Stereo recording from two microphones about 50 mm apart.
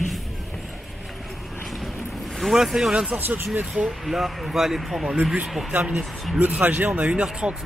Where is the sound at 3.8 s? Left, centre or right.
Centre.